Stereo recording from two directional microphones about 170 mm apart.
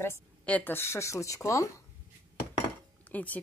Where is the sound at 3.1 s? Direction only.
10° left (ahead or behind).